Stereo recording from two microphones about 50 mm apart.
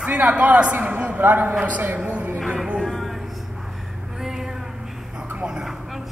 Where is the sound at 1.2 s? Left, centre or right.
Right.